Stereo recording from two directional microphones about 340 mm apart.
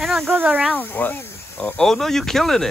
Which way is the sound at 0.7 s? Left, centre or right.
Centre.